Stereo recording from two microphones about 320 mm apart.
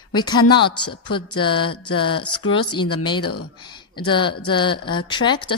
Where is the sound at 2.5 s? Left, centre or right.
Centre.